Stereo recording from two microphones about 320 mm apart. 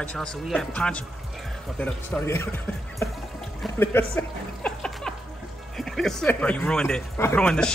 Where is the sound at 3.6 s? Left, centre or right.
Centre.